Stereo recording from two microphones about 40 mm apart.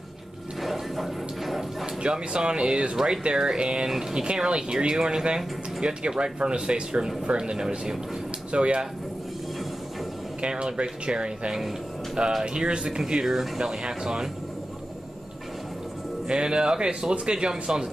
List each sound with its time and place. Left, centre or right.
0.6 s a sound: centre
2.0 s speech: right
10.4 s speech: right
13.0 s speech: centre
16.3 s speech: right